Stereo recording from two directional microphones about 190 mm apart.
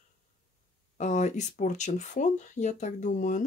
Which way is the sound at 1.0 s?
40° left (ahead or behind).